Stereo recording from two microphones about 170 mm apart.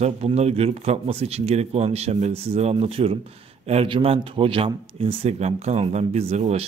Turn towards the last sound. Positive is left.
turn(degrees=-40)  # may be behind; listen again after turning